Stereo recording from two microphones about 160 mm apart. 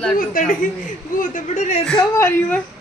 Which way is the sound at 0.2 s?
60° left (ahead or behind).